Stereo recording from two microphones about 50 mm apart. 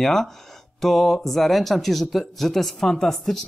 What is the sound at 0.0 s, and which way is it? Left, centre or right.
Speech, centre.